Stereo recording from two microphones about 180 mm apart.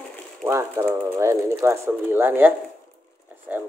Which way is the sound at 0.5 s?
15° right (ahead or behind).